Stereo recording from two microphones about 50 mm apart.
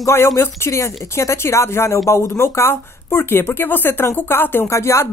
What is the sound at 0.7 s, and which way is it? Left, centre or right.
Speech, left.